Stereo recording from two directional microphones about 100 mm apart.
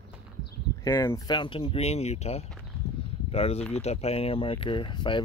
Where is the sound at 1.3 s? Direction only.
55° left (ahead or behind).